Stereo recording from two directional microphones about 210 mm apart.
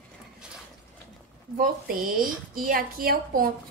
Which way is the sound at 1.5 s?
45° right (ahead or behind).